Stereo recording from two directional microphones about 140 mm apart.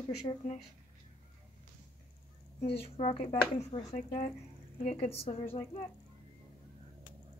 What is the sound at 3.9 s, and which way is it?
Speech, 65° left (ahead or behind).